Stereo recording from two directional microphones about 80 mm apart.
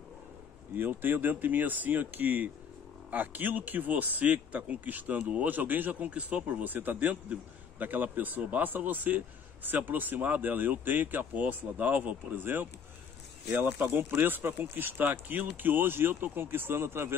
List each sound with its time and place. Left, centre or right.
0.7 s speech: right